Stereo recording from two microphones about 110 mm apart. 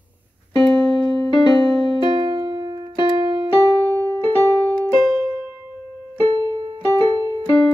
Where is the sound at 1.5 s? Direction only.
50° right (ahead or behind).